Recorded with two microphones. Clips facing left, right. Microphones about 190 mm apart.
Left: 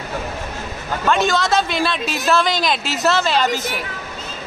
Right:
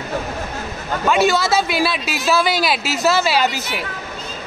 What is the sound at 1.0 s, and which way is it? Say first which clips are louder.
Speech: right 2 dB; 5° right (ahead or behind).